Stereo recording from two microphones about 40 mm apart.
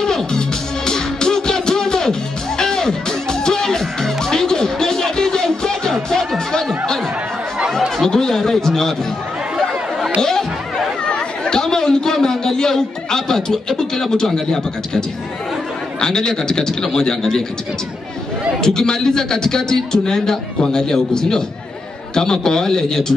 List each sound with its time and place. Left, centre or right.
0.0 s music: centre
8.0 s a man's voice: centre
11.1 s chatter: centre
13.7 s a man's voice: centre
18.6 s a man's voice: centre